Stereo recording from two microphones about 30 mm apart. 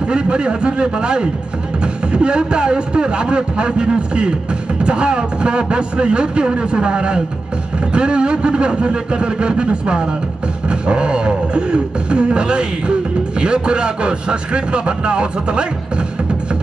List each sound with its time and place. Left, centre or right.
0.1 s a man's voice: right